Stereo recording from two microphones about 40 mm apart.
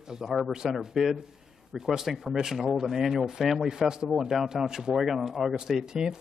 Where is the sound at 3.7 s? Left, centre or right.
Centre.